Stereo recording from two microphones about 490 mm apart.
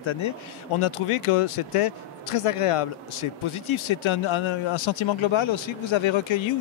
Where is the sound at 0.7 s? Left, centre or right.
Left.